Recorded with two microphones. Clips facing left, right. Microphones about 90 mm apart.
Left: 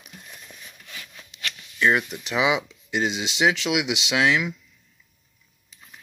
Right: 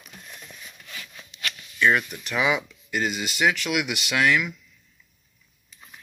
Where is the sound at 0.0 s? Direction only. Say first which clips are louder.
Right 1 dB; 5° left (ahead or behind).